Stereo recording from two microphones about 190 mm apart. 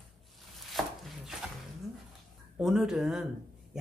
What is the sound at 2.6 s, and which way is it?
Speech, centre (ahead or behind).